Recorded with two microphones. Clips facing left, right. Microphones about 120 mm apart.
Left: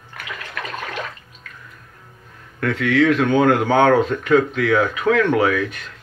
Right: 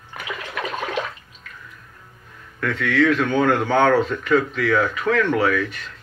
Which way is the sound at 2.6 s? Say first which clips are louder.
Left 3 dB; 60° left (ahead or behind).